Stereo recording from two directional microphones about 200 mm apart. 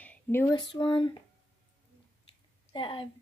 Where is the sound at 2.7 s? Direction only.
25° left (ahead or behind).